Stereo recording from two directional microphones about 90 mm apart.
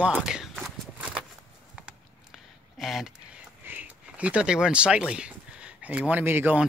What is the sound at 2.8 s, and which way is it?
Speech, centre (ahead or behind).